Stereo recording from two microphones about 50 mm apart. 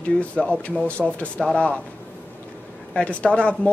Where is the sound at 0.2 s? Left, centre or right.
Left.